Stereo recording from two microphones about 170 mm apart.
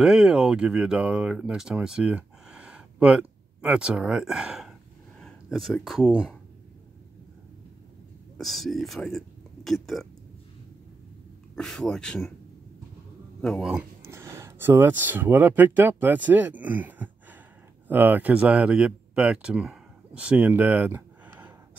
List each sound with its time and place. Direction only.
0.0 s speech: 5° right (ahead or behind)
8.4 s speech: centre (ahead or behind)
11.5 s speech: 5° left (ahead or behind)
13.4 s speech: centre (ahead or behind)